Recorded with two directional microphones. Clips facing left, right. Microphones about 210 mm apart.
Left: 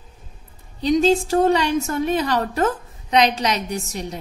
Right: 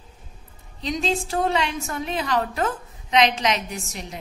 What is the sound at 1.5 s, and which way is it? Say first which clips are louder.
A woman's voice: left 6 dB; 40° left (ahead or behind).